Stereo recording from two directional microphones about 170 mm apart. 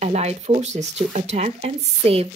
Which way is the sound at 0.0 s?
40° right (ahead or behind).